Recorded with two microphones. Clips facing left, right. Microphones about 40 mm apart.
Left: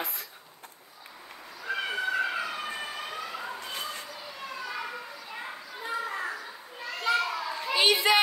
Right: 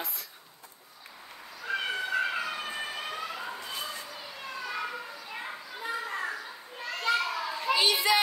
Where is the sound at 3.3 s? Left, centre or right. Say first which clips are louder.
Left 1 dB; centre.